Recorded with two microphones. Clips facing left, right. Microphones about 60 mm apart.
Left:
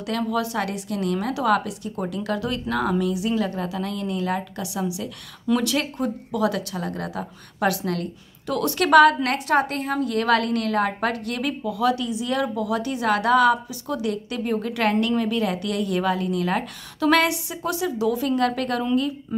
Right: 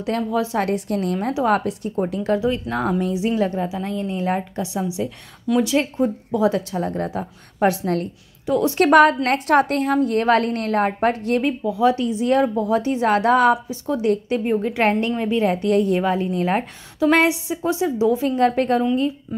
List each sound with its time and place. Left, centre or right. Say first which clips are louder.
0.0 s a woman's voice: right 3 dB; right
5.5 s speech: right 3 dB; centre
5.8 s a woman's voice: right 5 dB; right
8.5 s speech: right 5 dB; centre
8.7 s a woman's voice: right 1 dB; right